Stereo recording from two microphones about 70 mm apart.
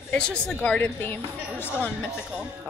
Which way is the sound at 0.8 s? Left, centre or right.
Left.